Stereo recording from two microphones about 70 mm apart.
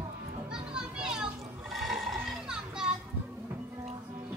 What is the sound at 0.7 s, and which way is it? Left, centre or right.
Children playing, centre.